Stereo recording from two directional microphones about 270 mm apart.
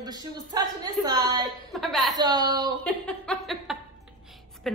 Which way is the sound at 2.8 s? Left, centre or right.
Centre.